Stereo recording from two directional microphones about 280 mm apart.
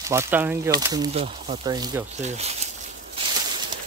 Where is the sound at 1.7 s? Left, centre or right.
Centre.